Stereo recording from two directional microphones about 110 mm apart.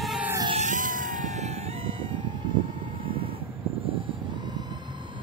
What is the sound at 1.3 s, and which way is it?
Vehicle, 90° right.